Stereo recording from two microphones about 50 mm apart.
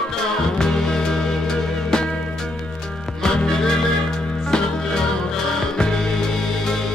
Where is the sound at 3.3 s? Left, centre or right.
Centre.